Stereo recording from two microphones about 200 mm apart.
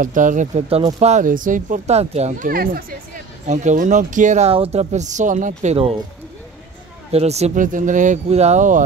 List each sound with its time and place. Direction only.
0.0 s speech: 40° right (ahead or behind)
7.1 s speech: 30° right (ahead or behind)